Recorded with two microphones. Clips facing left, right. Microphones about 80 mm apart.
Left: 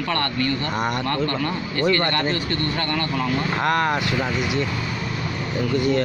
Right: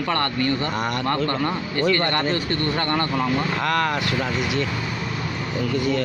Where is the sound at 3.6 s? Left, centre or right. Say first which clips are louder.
Left 1 dB; left.